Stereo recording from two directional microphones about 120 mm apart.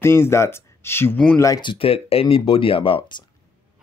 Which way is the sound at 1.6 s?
45° left (ahead or behind).